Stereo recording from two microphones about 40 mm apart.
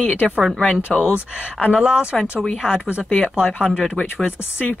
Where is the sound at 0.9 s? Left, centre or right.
Centre.